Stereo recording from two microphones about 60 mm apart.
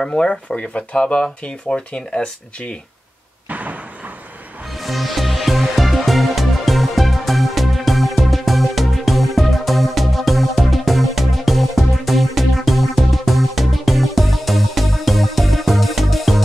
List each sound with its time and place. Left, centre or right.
0.0 s speech: centre
3.4 s a sound: right
4.8 s music: centre